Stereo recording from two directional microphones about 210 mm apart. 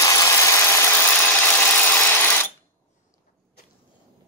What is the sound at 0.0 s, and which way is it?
Engine, 15° left (ahead or behind).